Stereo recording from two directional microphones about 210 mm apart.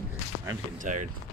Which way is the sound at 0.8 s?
35° right (ahead or behind).